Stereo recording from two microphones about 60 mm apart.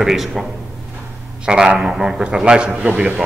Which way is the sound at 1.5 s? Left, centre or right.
Centre.